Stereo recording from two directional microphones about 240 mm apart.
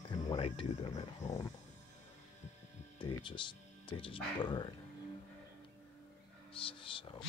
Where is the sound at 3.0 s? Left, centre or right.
Centre.